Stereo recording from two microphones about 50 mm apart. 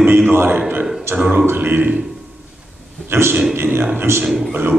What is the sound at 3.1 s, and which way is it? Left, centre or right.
A man's voice, right.